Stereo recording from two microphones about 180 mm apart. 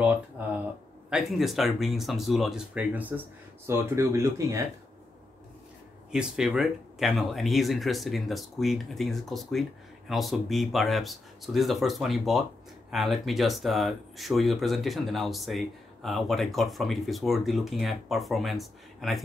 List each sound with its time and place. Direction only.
0.0 s speech: 10° right (ahead or behind)
6.1 s speech: 5° right (ahead or behind)